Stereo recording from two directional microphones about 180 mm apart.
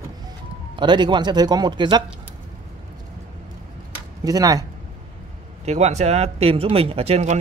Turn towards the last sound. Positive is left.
turn(degrees=-35)  # may be behind; listen again after turning